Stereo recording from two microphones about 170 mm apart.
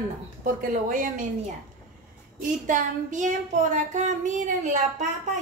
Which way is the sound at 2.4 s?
50° right (ahead or behind).